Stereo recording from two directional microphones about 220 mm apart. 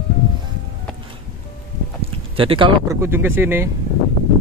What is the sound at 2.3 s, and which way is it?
Speech, 25° right (ahead or behind).